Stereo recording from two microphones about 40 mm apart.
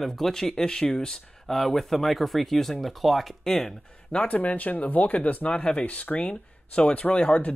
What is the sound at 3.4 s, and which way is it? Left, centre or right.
Speech, centre.